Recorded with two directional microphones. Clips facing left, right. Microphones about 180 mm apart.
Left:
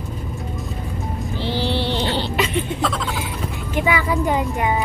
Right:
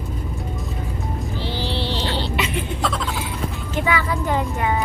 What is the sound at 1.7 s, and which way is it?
Vehicle, 55° left (ahead or behind).